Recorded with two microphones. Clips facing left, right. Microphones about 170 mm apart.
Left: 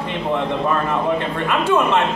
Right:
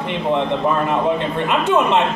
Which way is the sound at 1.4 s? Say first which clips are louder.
Right 1 dB; 20° right (ahead or behind).